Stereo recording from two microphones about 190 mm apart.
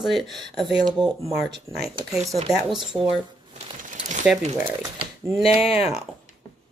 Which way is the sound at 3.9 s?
40° right (ahead or behind).